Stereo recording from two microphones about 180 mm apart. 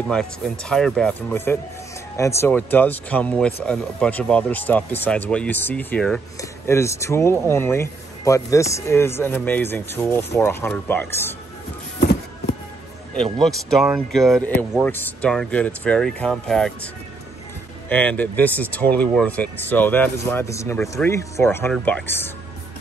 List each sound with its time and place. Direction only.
0.1 s speech: 5° left (ahead or behind)
12.0 s a sound: 60° left (ahead or behind)
13.1 s speech: centre (ahead or behind)